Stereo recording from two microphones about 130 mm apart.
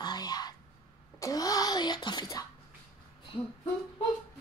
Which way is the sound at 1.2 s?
25° left (ahead or behind).